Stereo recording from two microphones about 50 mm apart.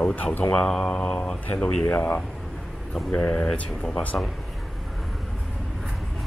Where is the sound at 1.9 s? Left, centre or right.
Left.